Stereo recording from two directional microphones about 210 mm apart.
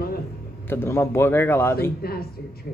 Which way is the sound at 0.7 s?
10° left (ahead or behind).